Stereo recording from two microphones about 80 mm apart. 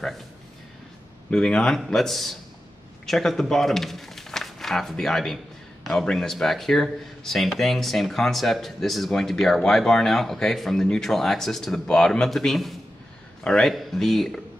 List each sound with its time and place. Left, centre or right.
1.3 s a man's voice: centre